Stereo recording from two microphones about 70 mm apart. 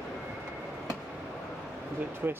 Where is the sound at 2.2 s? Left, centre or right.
Right.